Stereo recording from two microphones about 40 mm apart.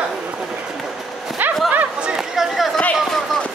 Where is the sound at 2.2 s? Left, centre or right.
Centre.